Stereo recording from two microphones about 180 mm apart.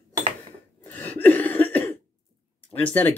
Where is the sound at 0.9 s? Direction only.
10° left (ahead or behind).